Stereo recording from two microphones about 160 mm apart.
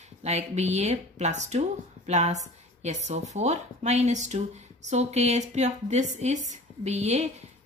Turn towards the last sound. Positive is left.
turn(degrees=-45)  # may be behind; listen again after turning